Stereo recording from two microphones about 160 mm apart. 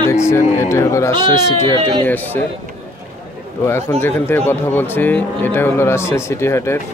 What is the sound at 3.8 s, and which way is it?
Speech, 15° left (ahead or behind).